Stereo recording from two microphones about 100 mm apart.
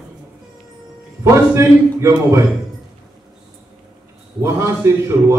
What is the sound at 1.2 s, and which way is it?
A man's voice, 30° right (ahead or behind).